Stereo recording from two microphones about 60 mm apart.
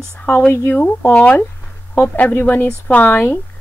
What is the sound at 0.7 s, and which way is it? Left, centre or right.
Speech, left.